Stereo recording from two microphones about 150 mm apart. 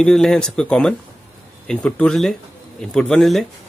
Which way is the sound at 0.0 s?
5° left (ahead or behind).